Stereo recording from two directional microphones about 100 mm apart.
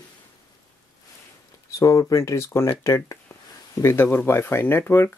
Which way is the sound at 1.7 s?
30° left (ahead or behind).